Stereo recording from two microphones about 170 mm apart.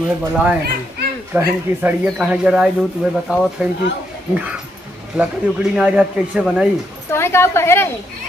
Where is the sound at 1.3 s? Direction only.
10° right (ahead or behind).